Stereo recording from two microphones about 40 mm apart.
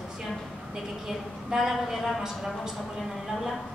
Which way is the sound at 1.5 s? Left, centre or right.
Centre.